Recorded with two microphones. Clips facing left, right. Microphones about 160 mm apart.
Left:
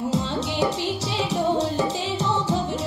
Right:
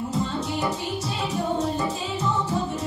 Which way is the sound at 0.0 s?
85° left.